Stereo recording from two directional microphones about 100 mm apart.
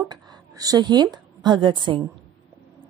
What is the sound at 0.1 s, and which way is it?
A woman's voice, 40° right (ahead or behind).